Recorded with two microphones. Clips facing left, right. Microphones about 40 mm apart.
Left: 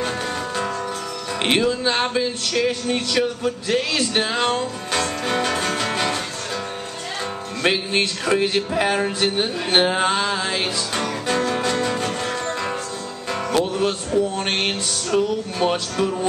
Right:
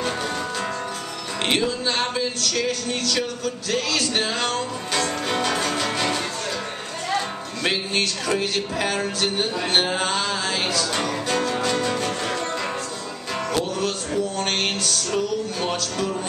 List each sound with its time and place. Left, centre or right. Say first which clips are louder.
1.4 s music: left 3 dB; centre
7.6 s music: left 3 dB; centre
13.5 s music: left 4 dB; left